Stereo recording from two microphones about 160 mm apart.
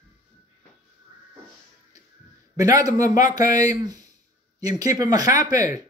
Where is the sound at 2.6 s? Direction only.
20° right (ahead or behind).